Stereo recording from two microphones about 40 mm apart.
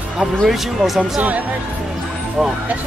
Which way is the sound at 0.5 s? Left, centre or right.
Centre.